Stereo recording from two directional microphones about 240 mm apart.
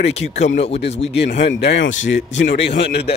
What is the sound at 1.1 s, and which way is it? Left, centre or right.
Speech, left.